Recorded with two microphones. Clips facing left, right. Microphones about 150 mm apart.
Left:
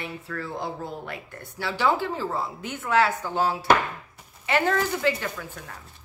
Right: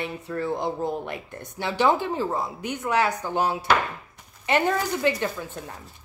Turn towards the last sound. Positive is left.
turn(degrees=-20)  # may be behind; listen again after turning